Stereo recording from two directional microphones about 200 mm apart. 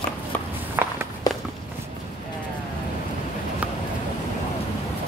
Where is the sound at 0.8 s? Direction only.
10° right (ahead or behind).